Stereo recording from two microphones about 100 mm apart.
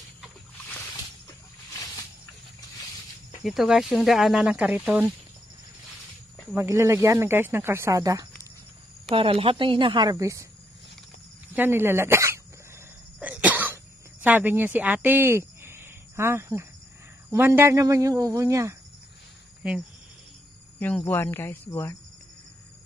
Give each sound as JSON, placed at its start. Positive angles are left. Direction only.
{"t": 3.4, "sound": "speech", "side_deg": -5}
{"t": 4.5, "sound": "speech", "side_deg": -15}
{"t": 6.5, "sound": "speech", "side_deg": -25}
{"t": 9.1, "sound": "speech", "side_deg": -65}
{"t": 10.1, "sound": "speech", "side_deg": -35}
{"t": 11.5, "sound": "speech", "side_deg": -20}
{"t": 13.2, "sound": "cough", "side_deg": -15}
{"t": 14.2, "sound": "speech", "side_deg": -15}
{"t": 21.0, "sound": "speech", "side_deg": 25}